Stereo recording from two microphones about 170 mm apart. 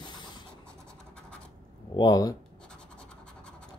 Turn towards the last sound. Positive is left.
turn(degrees=5)  # may be behind; listen again after turning